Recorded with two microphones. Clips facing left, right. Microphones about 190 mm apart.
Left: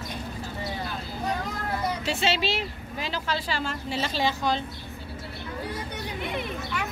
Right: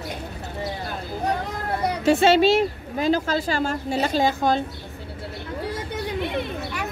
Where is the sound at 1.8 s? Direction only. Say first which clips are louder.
Right 11 dB; 60° right (ahead or behind).